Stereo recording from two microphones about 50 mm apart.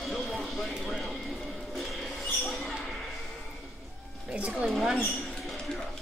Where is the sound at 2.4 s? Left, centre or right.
Centre.